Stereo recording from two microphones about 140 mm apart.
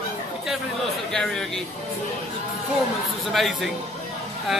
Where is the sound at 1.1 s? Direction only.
5° left (ahead or behind).